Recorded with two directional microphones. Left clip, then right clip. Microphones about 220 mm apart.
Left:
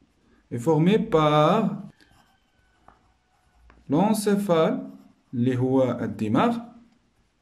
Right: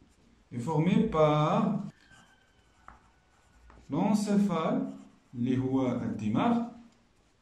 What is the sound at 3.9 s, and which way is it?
Speech, 45° left (ahead or behind).